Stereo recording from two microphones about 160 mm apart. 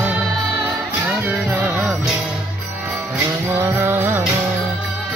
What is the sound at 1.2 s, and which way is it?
Music, 10° right (ahead or behind).